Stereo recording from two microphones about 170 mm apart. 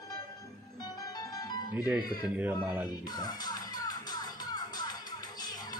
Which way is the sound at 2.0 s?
25° left (ahead or behind).